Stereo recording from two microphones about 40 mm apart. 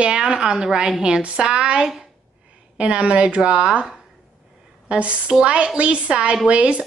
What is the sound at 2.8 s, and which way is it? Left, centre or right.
A woman's voice, right.